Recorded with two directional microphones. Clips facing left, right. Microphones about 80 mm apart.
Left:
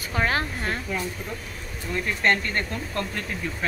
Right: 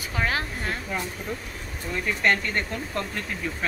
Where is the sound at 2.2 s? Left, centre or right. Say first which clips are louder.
Even; centre.